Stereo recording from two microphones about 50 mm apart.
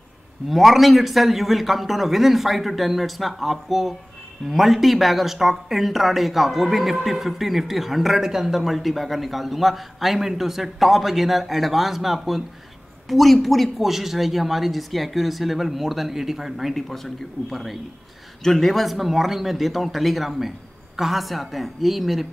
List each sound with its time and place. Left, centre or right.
0.5 s speech: centre